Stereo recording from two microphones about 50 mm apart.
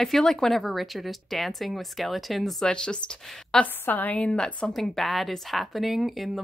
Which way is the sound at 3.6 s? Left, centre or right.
Left.